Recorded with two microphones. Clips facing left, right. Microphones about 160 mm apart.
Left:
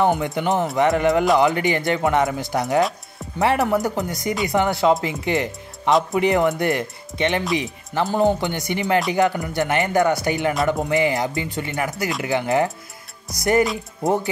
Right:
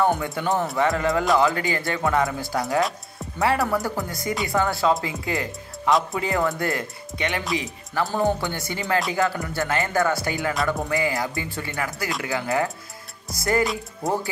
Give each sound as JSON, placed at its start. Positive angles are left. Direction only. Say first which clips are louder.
{"t": 0.0, "sound": "speech", "louder": "left 3 dB", "side_deg": 20}